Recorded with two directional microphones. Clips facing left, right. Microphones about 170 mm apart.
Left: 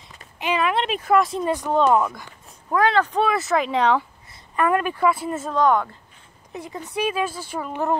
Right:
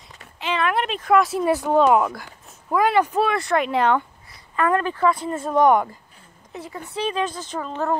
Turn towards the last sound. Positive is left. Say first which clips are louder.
# even
turn(degrees=15)  # may be behind; listen again after turning